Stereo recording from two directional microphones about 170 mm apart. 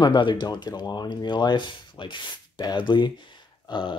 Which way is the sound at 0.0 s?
25° left (ahead or behind).